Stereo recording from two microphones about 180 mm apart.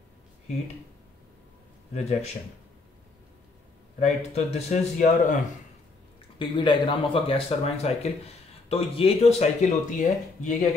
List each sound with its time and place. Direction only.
2.0 s speech: 40° left (ahead or behind)
4.0 s speech: 35° left (ahead or behind)
6.3 s speech: 25° left (ahead or behind); by 10.5 s 45° left (ahead or behind)